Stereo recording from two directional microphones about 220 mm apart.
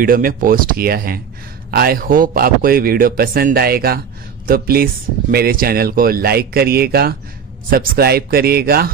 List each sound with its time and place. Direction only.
0.0 s a man's voice: 40° right (ahead or behind)